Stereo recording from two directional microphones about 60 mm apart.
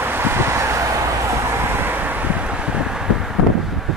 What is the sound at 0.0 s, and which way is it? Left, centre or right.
Vehicle, right.